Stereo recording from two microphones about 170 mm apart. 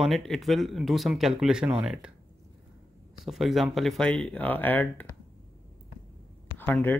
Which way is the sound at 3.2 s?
Centre (ahead or behind).